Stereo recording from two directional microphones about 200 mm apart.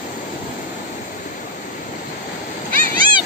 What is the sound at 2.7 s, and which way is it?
Cat, 45° right (ahead or behind).